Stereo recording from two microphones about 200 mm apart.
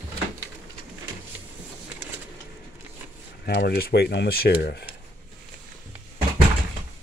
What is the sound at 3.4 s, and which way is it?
Speech, 55° left (ahead or behind).